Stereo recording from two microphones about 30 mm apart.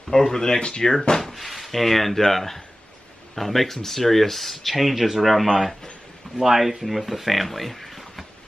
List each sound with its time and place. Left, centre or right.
0.1 s speech: centre
0.6 s speech: left
1.2 s speech: centre